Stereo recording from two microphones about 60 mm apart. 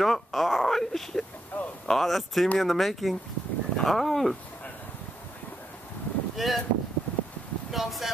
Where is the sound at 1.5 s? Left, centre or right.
Left.